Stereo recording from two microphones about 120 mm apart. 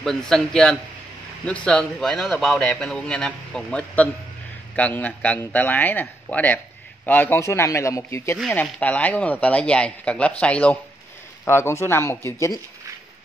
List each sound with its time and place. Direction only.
0.0 s a man's voice: 5° left (ahead or behind); by 8.4 s 25° left (ahead or behind)
8.6 s a man's voice: 10° left (ahead or behind)
11.4 s a man's voice: 20° left (ahead or behind)